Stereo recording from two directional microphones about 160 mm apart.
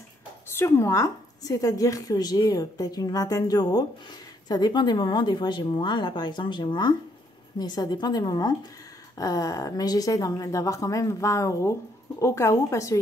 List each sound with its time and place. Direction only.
0.6 s a woman's voice: 15° left (ahead or behind)